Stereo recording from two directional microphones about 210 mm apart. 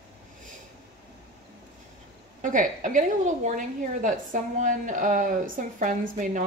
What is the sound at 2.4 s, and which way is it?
A woman's voice, 40° right (ahead or behind).